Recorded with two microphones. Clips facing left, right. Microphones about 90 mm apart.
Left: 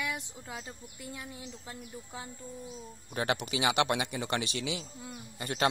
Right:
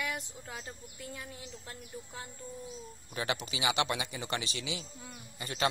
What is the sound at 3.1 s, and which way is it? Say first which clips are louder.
Speech: left 4 dB; 50° left (ahead or behind).